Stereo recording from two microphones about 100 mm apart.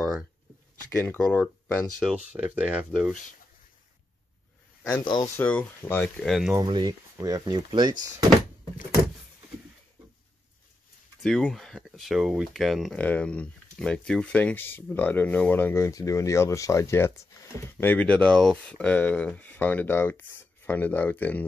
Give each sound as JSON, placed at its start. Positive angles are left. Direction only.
{"t": 0.9, "sound": "speech", "side_deg": 15}
{"t": 2.1, "sound": "speech", "side_deg": -15}
{"t": 5.0, "sound": "speech", "side_deg": 45}
{"t": 5.3, "sound": "speech", "side_deg": 15}
{"t": 6.1, "sound": "speech", "side_deg": 0}
{"t": 6.6, "sound": "speech", "side_deg": -45}
{"t": 11.2, "sound": "speech", "side_deg": 0}
{"t": 12.9, "sound": "speech", "side_deg": 15}